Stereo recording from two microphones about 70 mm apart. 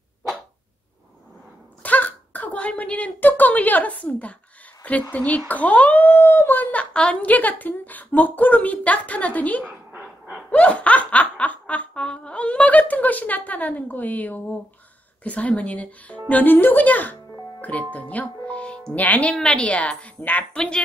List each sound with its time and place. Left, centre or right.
1.8 s a child's voice: left
10.5 s snicker: centre
15.2 s a child's voice: left
20.5 s a woman's voice: centre